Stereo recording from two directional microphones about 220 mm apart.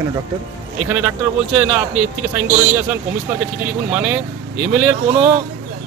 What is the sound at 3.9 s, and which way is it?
Speech, 5° right (ahead or behind).